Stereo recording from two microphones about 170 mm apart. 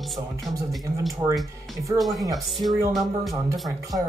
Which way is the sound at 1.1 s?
20° right (ahead or behind).